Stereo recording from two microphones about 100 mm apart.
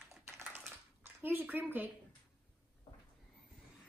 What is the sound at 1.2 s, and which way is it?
Speech, 20° right (ahead or behind).